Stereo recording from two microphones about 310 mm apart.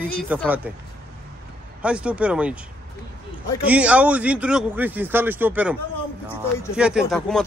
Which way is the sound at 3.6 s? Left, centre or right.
Centre.